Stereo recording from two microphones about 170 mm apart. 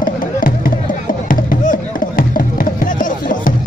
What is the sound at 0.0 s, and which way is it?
Music, 55° left (ahead or behind).